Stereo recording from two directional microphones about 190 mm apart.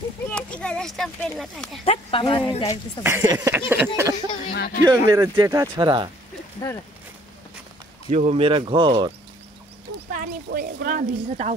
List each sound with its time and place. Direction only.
0.3 s speech: 5° left (ahead or behind)
1.9 s speech: 30° left (ahead or behind)
3.0 s a sound: 15° right (ahead or behind)
4.5 s speech: 45° left (ahead or behind)
4.8 s speech: 20° right (ahead or behind)
8.1 s speech: 35° right (ahead or behind)
10.1 s speech: 55° right (ahead or behind)